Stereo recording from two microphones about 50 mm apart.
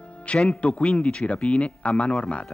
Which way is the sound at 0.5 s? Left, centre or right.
Left.